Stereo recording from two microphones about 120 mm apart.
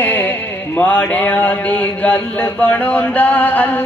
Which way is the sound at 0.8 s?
15° left (ahead or behind).